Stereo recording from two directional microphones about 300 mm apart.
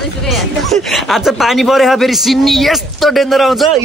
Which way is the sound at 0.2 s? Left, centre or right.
Centre.